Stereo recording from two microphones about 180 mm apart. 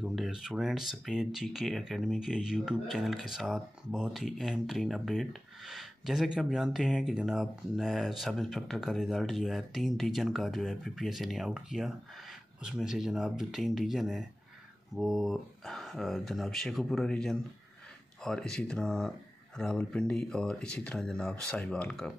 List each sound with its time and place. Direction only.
0.0 s speech: centre (ahead or behind)